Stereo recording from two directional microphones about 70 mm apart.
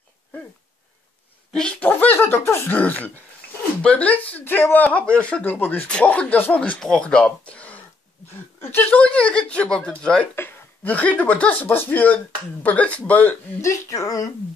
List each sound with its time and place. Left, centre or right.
1.8 s a sound: left
2.7 s speech: left
5.5 s speech: left
5.9 s speech: centre
6.8 s speech: centre
8.9 s speech: centre
11.6 s speech: left
13.6 s speech: left